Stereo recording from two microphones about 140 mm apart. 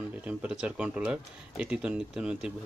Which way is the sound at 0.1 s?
10° right (ahead or behind).